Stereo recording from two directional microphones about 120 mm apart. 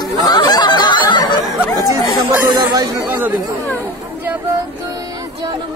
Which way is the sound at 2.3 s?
15° right (ahead or behind).